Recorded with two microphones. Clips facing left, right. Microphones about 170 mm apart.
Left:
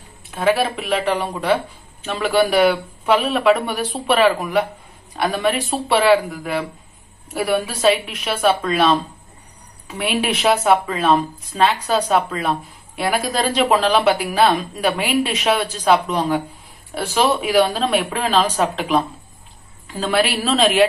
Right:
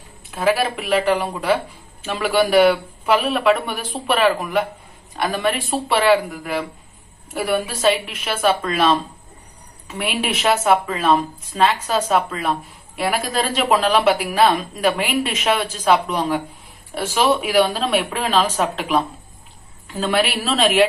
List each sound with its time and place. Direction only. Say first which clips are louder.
0.3 s a woman's voice: left 1 dB; 5° right (ahead or behind)